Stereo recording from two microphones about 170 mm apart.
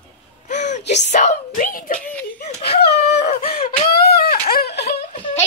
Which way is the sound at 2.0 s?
10° left (ahead or behind).